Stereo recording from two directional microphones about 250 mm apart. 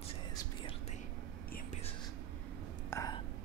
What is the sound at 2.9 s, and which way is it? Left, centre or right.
Whispering, centre.